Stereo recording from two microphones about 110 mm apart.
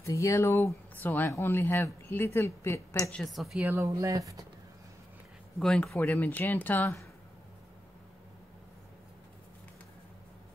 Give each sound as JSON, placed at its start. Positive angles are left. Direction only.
{"t": 0.0, "sound": "a woman's voice", "side_deg": 30}
{"t": 3.1, "sound": "a woman's voice", "side_deg": 5}
{"t": 3.6, "sound": "speech", "side_deg": -25}
{"t": 5.6, "sound": "a woman's voice", "side_deg": 5}
{"t": 5.9, "sound": "speech", "side_deg": 20}